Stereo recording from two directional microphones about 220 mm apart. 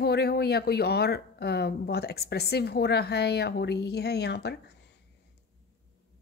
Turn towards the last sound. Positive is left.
turn(degrees=50)  # may be behind; listen again after turning